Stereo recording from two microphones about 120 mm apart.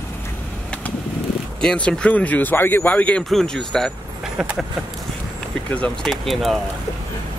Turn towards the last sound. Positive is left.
turn(degrees=0)  # may be behind; listen again after turning